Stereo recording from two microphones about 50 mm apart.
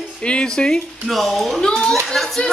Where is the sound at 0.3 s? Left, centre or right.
Centre.